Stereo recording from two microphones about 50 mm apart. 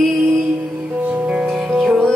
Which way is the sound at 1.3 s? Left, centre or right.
Right.